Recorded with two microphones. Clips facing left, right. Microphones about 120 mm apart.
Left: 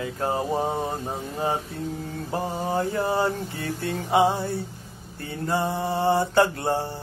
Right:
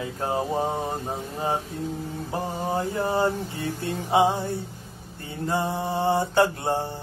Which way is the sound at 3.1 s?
20° right (ahead or behind).